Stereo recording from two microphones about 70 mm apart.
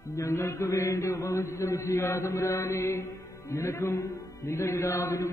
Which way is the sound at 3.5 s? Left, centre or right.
Left.